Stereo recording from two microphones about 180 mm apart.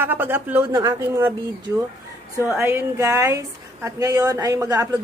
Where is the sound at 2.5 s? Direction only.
15° right (ahead or behind).